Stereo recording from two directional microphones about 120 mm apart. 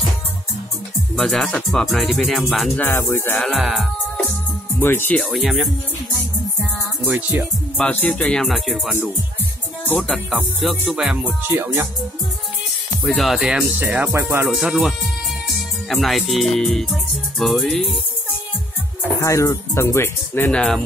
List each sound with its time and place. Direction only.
1.1 s music: centre (ahead or behind)
2.8 s speech: 20° left (ahead or behind)
3.3 s music: centre (ahead or behind)
4.7 s speech: 15° left (ahead or behind)
5.2 s music: centre (ahead or behind)
7.1 s music: 15° right (ahead or behind)
7.7 s music: 10° left (ahead or behind)
10.0 s music: centre (ahead or behind); by 11.9 s 20° right (ahead or behind)
13.0 s music: centre (ahead or behind)
13.7 s music: 15° right (ahead or behind)
14.5 s music: 5° right (ahead or behind)
19.2 s speech: 25° left (ahead or behind)